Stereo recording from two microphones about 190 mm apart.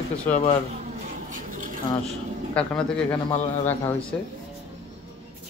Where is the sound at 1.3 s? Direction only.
45° right (ahead or behind).